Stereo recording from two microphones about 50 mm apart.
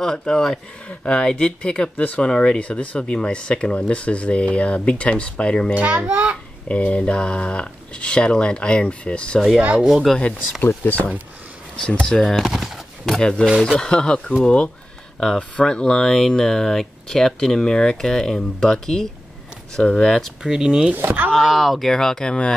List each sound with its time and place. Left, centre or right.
0.0 s speech: centre
5.8 s a child's voice: right
6.7 s speech: left
10.1 s speech: centre
10.6 s speech: left
12.1 s speech: centre
12.4 s a sound: centre
13.1 s speech: centre
20.4 s speech: centre
21.3 s speech: centre